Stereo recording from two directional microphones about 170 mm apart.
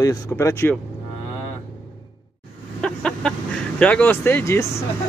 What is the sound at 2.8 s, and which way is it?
Chicken, 5° left (ahead or behind).